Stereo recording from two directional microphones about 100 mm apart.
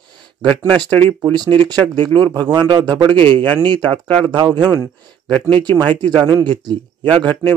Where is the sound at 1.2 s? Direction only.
45° right (ahead or behind).